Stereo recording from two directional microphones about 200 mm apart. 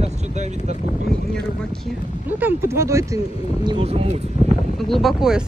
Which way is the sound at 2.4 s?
10° right (ahead or behind).